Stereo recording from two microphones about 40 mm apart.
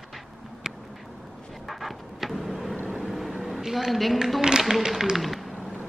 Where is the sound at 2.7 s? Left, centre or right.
Right.